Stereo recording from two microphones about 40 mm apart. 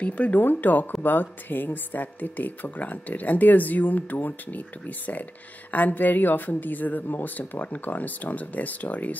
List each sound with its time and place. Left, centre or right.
0.0 s speech: left
0.4 s speech: left